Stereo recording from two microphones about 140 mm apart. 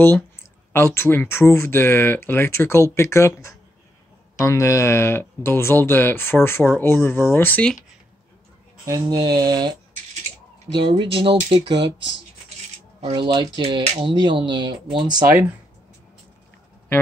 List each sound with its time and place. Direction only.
0.7 s speech: 15° left (ahead or behind)
8.8 s speech: 25° right (ahead or behind)